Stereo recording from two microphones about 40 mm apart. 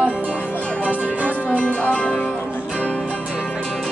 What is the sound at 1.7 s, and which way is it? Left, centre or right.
Music, left.